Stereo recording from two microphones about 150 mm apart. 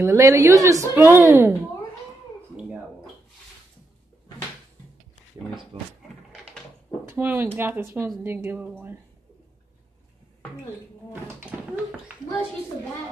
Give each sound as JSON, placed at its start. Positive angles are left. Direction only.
{"t": 0.0, "sound": "a woman's voice", "side_deg": -20}
{"t": 5.7, "sound": "speech", "side_deg": -45}
{"t": 7.1, "sound": "a woman's voice", "side_deg": -15}
{"t": 11.3, "sound": "a woman's voice", "side_deg": -10}